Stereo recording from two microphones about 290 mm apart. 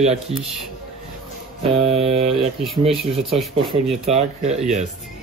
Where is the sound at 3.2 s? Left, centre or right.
Centre.